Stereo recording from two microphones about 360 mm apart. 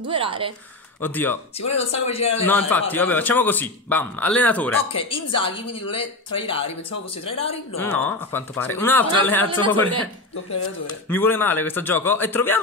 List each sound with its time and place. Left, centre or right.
0.1 s speech: centre
1.0 s speech: centre
1.6 s a woman's voice: centre
2.4 s a woman's voice: centre
7.8 s speech: centre
11.1 s speech: centre